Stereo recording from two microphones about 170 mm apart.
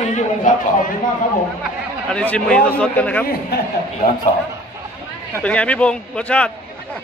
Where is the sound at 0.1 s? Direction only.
50° left (ahead or behind).